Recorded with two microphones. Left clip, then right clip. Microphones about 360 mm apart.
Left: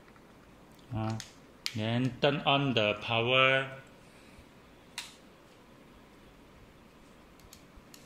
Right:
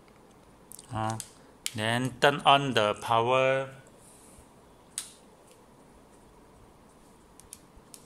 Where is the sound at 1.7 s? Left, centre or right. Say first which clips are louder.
Right 5 dB; right.